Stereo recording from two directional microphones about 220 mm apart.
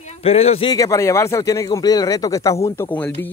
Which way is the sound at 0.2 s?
25° left (ahead or behind).